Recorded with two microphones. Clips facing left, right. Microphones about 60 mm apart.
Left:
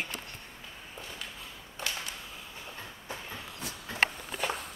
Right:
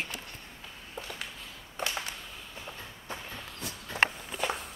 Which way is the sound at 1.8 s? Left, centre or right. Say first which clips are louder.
Right 3 dB; right.